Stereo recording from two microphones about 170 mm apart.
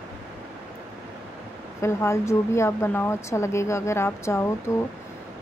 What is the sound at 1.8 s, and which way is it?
Speech, 15° left (ahead or behind).